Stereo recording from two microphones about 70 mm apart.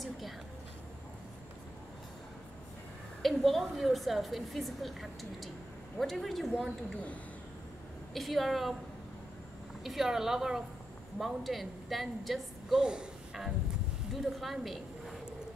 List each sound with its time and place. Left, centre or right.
3.2 s a woman's voice: centre
8.1 s a woman's voice: centre
9.8 s a woman's voice: centre